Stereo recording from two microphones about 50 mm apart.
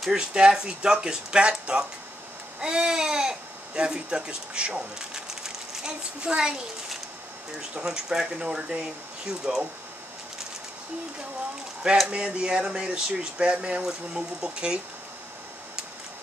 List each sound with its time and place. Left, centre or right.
0.0 s speech: centre
7.7 s speech: centre
12.1 s speech: centre